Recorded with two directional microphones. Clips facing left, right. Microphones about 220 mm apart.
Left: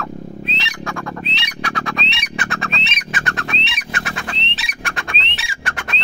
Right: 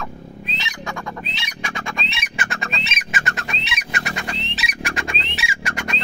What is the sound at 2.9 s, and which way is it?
Squawk, centre (ahead or behind).